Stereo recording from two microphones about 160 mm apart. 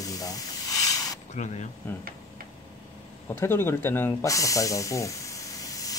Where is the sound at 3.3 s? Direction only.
15° left (ahead or behind).